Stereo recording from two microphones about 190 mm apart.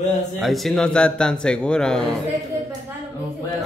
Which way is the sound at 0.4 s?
Centre (ahead or behind).